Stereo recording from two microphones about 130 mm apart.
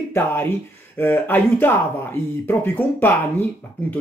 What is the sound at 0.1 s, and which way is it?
Speech, 15° left (ahead or behind).